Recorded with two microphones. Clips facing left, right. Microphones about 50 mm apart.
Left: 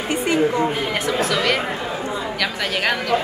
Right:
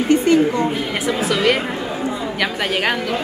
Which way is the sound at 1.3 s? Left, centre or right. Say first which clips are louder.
Right 3 dB; centre.